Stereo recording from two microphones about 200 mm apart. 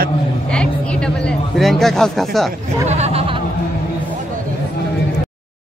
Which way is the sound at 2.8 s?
35° right (ahead or behind).